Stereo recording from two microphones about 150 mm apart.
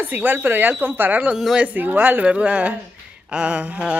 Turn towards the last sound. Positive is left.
turn(degrees=-10)  # may be behind; listen again after turning